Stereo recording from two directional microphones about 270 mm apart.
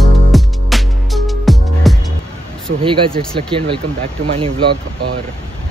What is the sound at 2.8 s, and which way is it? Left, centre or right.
Speech, centre.